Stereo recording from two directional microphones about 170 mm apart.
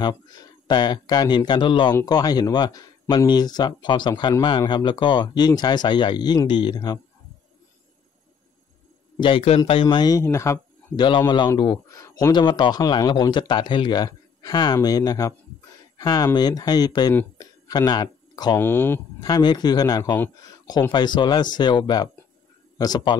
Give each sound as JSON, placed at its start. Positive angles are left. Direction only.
{"t": 0.0, "sound": "speech", "side_deg": 25}
{"t": 9.2, "sound": "a man's voice", "side_deg": 35}
{"t": 17.1, "sound": "a sound", "side_deg": 15}
{"t": 18.6, "sound": "speech", "side_deg": 15}